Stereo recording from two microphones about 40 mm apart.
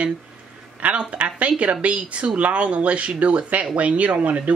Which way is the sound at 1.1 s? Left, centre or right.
Right.